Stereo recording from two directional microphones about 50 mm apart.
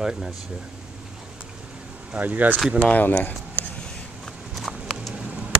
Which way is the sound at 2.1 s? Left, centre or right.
Right.